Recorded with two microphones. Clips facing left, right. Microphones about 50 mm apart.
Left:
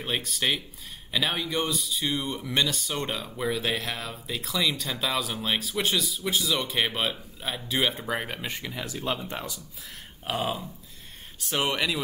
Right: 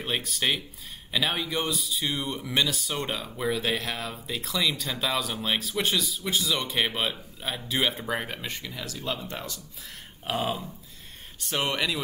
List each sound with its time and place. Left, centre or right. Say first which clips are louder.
0.0 s speech: even; centre
10.2 s speech: even; centre